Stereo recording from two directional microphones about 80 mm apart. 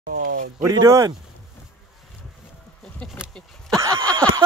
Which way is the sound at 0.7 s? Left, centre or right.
Right.